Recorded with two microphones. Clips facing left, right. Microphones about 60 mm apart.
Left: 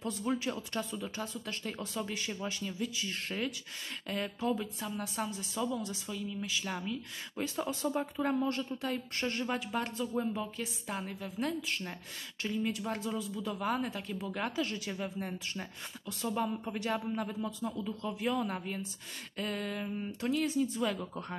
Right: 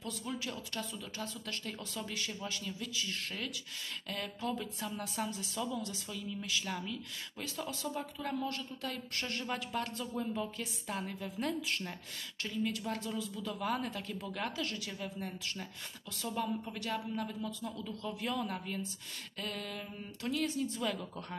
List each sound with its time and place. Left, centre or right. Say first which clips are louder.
0.0 s speech: left 6 dB; left
4.5 s speech: left 3 dB; centre
5.6 s speech: left 4 dB; centre
12.4 s speech: left 2 dB; centre
15.0 s speech: left 3 dB; centre
20.4 s speech: left 4 dB; centre